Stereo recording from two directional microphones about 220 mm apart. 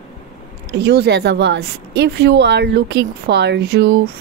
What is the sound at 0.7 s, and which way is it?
A woman's voice, 45° right (ahead or behind).